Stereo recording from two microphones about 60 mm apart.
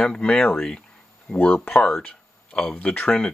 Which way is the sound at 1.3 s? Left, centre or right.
Left.